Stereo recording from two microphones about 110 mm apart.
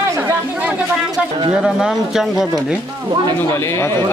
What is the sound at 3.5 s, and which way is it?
Speech, 25° left (ahead or behind).